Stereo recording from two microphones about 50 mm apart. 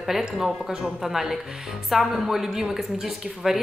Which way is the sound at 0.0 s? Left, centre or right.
Centre.